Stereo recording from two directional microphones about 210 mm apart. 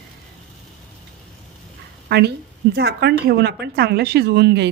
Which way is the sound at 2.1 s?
50° right (ahead or behind).